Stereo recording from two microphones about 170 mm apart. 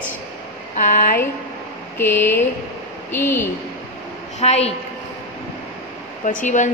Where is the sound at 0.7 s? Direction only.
45° left (ahead or behind).